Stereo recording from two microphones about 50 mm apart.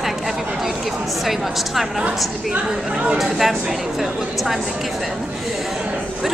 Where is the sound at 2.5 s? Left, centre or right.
Centre.